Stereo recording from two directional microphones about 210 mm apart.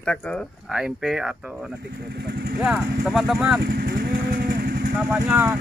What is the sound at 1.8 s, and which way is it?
Speech, 50° right (ahead or behind).